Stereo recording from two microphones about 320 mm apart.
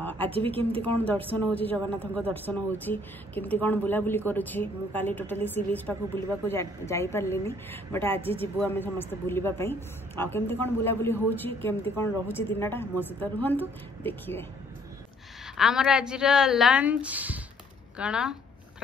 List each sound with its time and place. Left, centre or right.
0.0 s a sound: centre
0.6 s speech: centre
1.6 s a woman's voice: centre
15.5 s speech: centre